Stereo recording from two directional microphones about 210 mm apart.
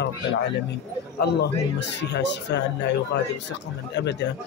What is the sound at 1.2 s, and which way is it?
Speech, 55° left (ahead or behind).